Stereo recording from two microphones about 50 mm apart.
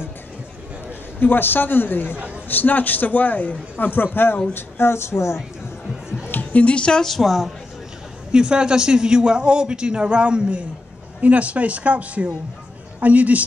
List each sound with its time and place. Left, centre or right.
1.2 s a man's voice: left
6.5 s speech: left
7.0 s a woman's voice: centre
8.3 s speech: centre